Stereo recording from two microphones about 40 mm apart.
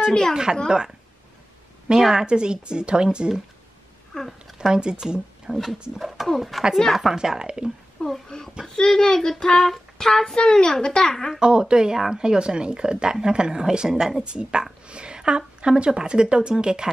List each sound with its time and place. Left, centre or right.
0.7 s a woman's voice: centre
4.1 s speech: centre
4.6 s speech: centre
5.5 s speech: centre
7.2 s speech: centre
8.0 s speech: left
8.6 s speech: centre
11.3 s a woman's voice: right